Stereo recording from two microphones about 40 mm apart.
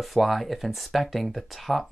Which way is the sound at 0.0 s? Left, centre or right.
Centre.